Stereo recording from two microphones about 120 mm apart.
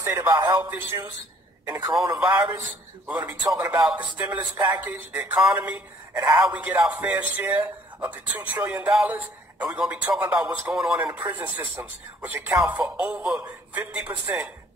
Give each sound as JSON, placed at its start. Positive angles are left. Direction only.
{"t": 0.0, "sound": "a man's voice", "side_deg": -20}
{"t": 2.1, "sound": "a man's voice", "side_deg": -10}